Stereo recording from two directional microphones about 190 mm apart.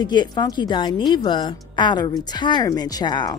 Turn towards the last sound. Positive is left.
turn(degrees=20)  # may be behind; listen again after turning